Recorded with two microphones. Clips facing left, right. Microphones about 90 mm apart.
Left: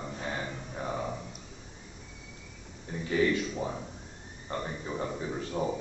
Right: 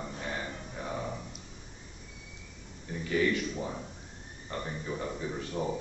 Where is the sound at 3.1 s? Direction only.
25° left (ahead or behind).